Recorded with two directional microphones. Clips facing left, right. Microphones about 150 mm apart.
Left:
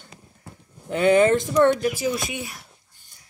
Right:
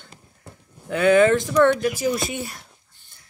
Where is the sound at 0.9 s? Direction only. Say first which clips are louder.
Right 1 dB; 20° left (ahead or behind).